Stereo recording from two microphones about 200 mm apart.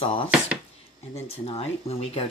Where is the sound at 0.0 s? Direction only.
30° left (ahead or behind).